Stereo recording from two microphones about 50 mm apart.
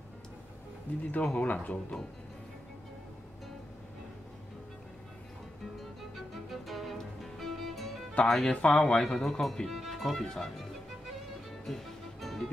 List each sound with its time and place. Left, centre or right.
1.2 s speech: centre
1.5 s speech: left
5.8 s music: centre
8.2 s speech: centre
8.5 s speech: left
9.1 s speech: centre
11.6 s music: centre